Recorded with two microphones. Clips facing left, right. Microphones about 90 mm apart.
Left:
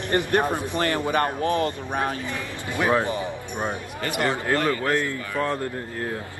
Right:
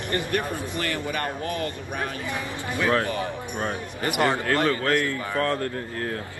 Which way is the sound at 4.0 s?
20° right (ahead or behind).